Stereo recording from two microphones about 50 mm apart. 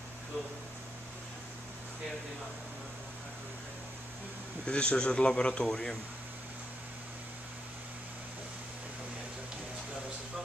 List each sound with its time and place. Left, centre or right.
4.6 s a man's voice: centre